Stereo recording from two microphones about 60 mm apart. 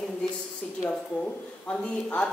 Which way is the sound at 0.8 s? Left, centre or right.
Centre.